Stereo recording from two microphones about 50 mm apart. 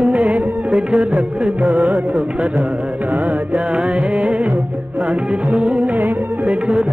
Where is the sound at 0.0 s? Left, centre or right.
Right.